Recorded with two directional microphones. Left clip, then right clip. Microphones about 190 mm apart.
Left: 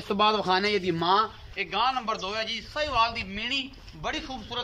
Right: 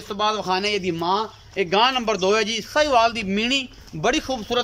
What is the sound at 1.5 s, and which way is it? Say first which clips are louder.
A man's voice: right 10 dB; 45° right (ahead or behind).